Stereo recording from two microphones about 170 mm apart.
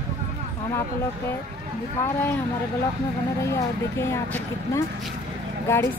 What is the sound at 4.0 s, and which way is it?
Speech, 15° left (ahead or behind).